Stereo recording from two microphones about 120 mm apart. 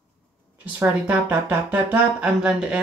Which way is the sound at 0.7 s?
15° right (ahead or behind).